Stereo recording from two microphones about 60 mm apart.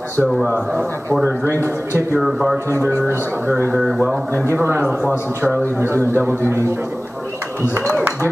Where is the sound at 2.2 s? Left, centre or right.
Centre.